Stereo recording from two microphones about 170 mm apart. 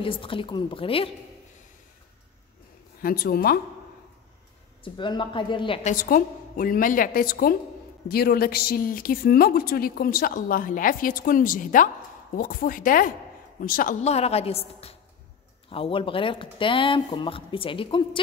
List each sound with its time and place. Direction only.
0.0 s speech: 30° left (ahead or behind)
3.0 s a woman's voice: 60° left (ahead or behind)
4.8 s a woman's voice: 30° left (ahead or behind)
5.8 s a woman's voice: 50° left (ahead or behind)
14.0 s speech: 40° left (ahead or behind)